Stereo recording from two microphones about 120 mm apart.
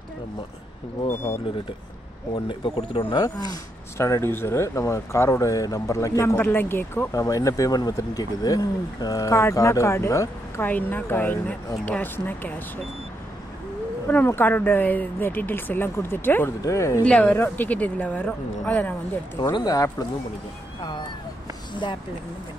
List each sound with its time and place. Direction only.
1.0 s speech: 20° left (ahead or behind)
2.3 s speech: 50° left (ahead or behind)
4.0 s speech: 20° left (ahead or behind)
10.7 s speech: 15° left (ahead or behind)
14.0 s speech: 15° left (ahead or behind)
17.0 s speech: 10° left (ahead or behind)
19.5 s speech: 30° left (ahead or behind)